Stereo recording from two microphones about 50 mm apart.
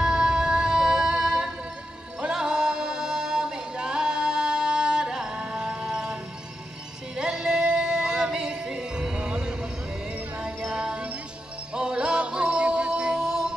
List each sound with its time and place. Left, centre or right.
0.0 s music: centre
7.2 s music: centre